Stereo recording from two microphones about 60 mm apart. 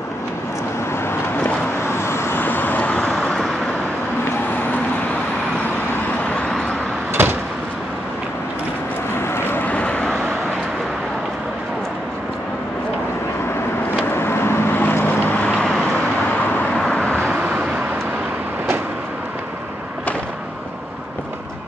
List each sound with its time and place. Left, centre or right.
1.9 s vehicle: left; by 3.4 s centre
7.2 s vehicle: right
9.3 s vehicle: left
14.1 s vehicle: left
15.4 s vehicle: centre
17.3 s vehicle: centre